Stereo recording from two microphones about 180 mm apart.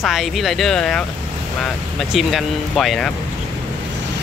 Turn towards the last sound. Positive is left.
turn(degrees=0)  # may be behind; listen again after turning